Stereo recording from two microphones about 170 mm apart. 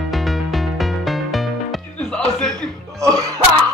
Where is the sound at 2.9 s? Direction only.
20° right (ahead or behind).